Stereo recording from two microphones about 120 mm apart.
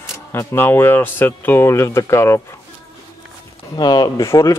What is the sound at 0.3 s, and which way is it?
Speech, 20° left (ahead or behind).